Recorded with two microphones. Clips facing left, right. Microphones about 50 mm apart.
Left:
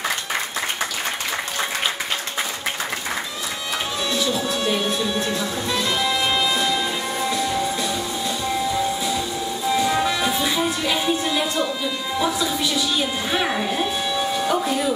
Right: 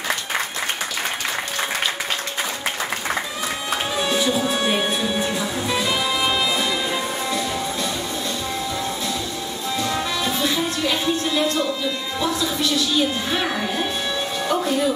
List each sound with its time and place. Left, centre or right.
4.1 s music: right
5.3 s music: centre
9.8 s music: centre
14.4 s a sound: centre